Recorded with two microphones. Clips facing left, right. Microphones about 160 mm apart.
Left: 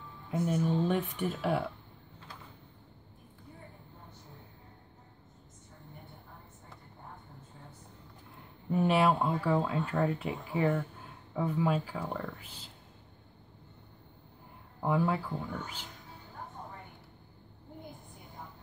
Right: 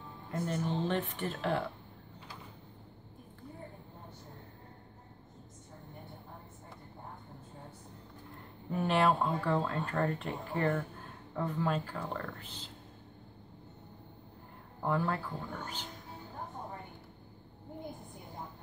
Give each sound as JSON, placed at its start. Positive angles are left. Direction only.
{"t": 0.3, "sound": "speech", "side_deg": 10}
{"t": 8.7, "sound": "speech", "side_deg": 10}
{"t": 14.8, "sound": "speech", "side_deg": 10}